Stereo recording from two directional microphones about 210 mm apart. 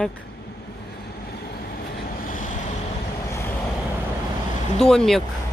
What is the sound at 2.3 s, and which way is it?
Vehicle, 35° left (ahead or behind).